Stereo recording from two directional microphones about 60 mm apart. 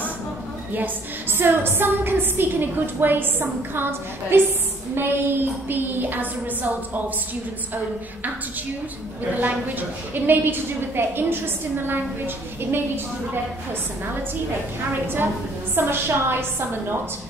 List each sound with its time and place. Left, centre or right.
1.4 s a woman's voice: right
9.3 s a woman's voice: right
15.7 s a woman's voice: right